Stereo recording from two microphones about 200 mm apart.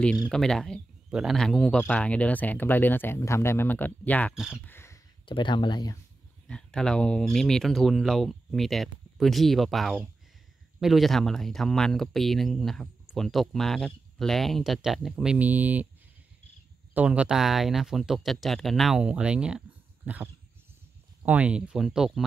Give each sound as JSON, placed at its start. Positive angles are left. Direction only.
{"t": 0.3, "sound": "speech", "side_deg": 5}
{"t": 4.3, "sound": "speech", "side_deg": -5}
{"t": 4.6, "sound": "a sound", "side_deg": 10}
{"t": 5.2, "sound": "speech", "side_deg": 25}
{"t": 6.4, "sound": "speech", "side_deg": 5}
{"t": 16.9, "sound": "speech", "side_deg": -5}
{"t": 20.1, "sound": "dog", "side_deg": -5}
{"t": 21.2, "sound": "speech", "side_deg": -10}